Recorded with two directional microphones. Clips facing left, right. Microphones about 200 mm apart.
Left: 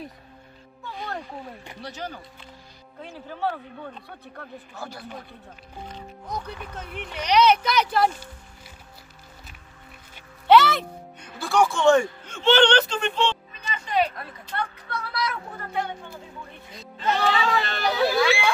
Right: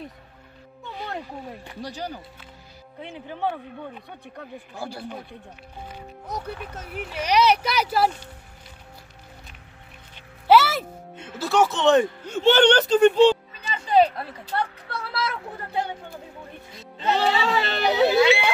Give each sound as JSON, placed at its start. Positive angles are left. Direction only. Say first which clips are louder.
{"t": 1.8, "sound": "speech", "louder": "right 3 dB", "side_deg": -40}
{"t": 3.0, "sound": "speech", "louder": "right 1 dB", "side_deg": -20}
{"t": 7.1, "sound": "speech", "louder": "left 1 dB", "side_deg": -5}
{"t": 10.4, "sound": "music", "louder": "even", "side_deg": -5}
{"t": 11.3, "sound": "speech", "louder": "right 1 dB", "side_deg": -20}
{"t": 12.4, "sound": "speech", "louder": "right 2 dB", "side_deg": -40}
{"t": 13.7, "sound": "a sound", "louder": "right 6 dB", "side_deg": -30}
{"t": 17.0, "sound": "speech", "louder": "right 1 dB", "side_deg": -30}